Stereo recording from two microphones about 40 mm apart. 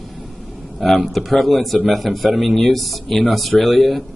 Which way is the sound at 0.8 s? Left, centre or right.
Centre.